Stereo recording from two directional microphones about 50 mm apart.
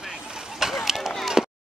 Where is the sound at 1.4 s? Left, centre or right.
Centre.